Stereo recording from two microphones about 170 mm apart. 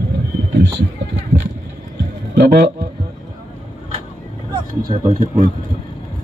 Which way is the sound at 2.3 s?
80° right.